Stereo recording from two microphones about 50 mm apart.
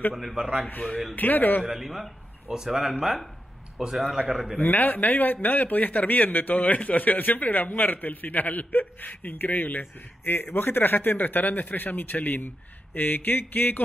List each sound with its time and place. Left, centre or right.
0.1 s speech: centre
1.1 s a man's voice: left
1.7 s a man's voice: centre
4.6 s a man's voice: left